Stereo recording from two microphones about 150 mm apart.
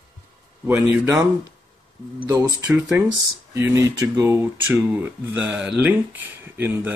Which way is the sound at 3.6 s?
15° right (ahead or behind).